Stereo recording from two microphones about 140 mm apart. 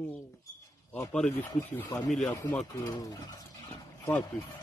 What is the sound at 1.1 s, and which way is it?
Speech, 10° left (ahead or behind).